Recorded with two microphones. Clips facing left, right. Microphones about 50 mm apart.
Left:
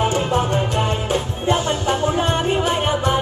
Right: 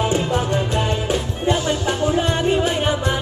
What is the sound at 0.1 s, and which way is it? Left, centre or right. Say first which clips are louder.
Music: left 1 dB; left.